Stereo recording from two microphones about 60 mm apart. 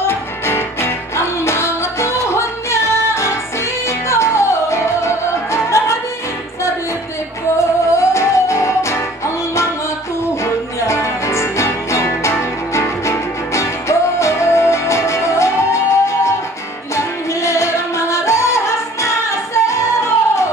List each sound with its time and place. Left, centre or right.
0.0 s music: left
7.5 s music: left